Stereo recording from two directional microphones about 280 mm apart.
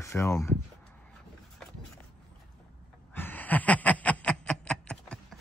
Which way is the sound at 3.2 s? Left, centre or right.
Centre.